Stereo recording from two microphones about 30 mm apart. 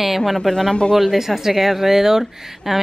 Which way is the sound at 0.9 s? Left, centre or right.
Centre.